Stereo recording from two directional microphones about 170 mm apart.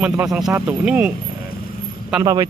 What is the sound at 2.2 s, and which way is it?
Speech, 20° right (ahead or behind).